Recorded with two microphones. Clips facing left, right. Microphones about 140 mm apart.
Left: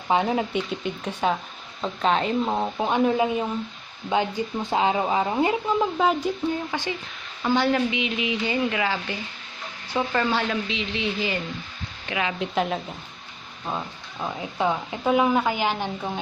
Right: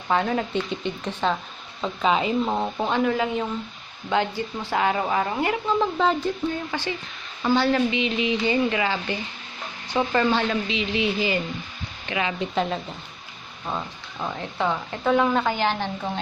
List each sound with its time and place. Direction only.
0.1 s speech: 20° left (ahead or behind)
0.7 s speech: 5° left (ahead or behind)
2.0 s speech: 5° right (ahead or behind)
2.9 s speech: 20° left (ahead or behind)
5.8 s speech: 10° left (ahead or behind)